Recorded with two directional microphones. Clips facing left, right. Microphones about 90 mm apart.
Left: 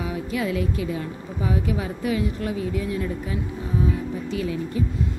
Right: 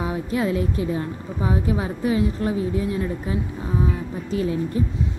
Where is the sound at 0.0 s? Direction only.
35° right (ahead or behind).